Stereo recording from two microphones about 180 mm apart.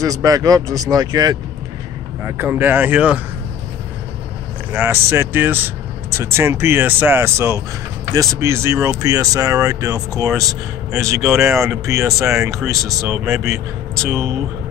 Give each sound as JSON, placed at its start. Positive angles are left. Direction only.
{"t": 0.0, "sound": "speech", "side_deg": -20}
{"t": 4.8, "sound": "speech", "side_deg": -10}